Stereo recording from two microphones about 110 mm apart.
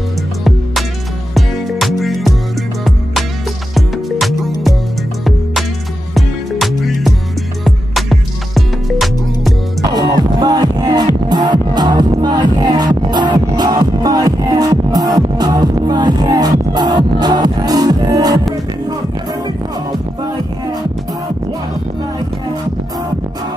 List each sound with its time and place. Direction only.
1.3 s music: centre (ahead or behind)
3.7 s music: centre (ahead or behind)
9.8 s music: 35° right (ahead or behind)